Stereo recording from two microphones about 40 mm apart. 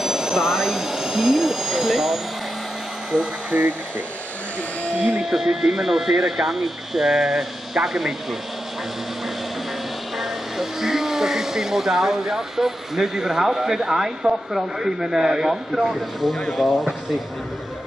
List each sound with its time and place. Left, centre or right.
0.0 s jet engine: centre
3.1 s speech: right
5.2 s speech: centre
10.1 s speech: centre